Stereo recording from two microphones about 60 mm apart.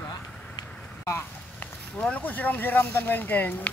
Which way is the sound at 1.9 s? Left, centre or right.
Left.